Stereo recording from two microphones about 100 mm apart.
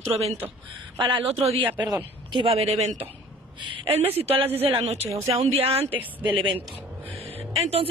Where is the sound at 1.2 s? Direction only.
85° right.